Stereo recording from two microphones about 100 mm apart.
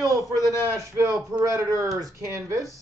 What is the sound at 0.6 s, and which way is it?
Speech, 30° right (ahead or behind).